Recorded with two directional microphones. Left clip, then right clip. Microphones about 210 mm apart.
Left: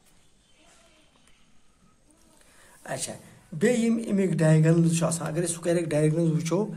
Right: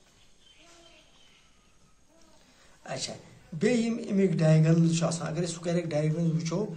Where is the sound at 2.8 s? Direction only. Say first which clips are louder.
Left 2 dB; 45° left (ahead or behind).